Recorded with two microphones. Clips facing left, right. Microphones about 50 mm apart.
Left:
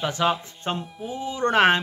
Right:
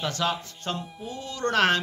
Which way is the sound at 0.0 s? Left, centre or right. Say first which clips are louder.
Left 4 dB; left.